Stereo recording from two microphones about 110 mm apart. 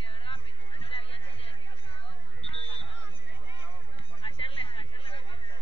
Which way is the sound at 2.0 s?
60° left (ahead or behind).